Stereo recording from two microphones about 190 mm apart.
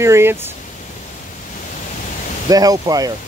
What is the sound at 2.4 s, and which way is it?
Speech, 20° right (ahead or behind).